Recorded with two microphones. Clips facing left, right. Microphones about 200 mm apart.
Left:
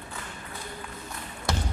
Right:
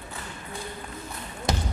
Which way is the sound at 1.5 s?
20° right (ahead or behind).